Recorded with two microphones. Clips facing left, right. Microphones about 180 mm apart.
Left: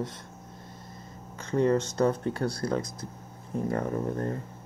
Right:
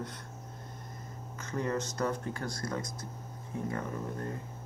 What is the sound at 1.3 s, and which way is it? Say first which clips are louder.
Speech: left 9 dB; 30° left (ahead or behind).